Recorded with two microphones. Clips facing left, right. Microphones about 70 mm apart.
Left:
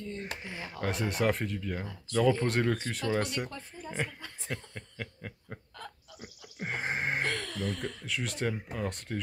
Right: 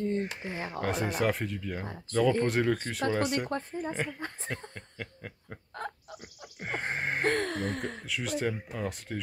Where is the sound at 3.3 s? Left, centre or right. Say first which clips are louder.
Right 6 dB; right.